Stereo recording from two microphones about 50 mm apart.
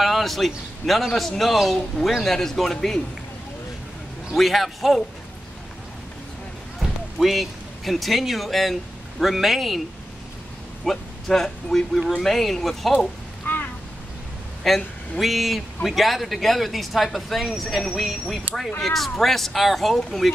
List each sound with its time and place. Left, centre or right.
0.0 s speech: centre
4.4 s speech: centre
6.8 s speech: centre
10.9 s speech: centre
13.5 s a sound: left
14.7 s speech: centre